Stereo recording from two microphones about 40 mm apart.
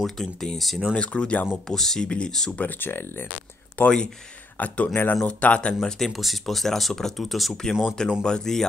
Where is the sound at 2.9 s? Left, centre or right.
Left.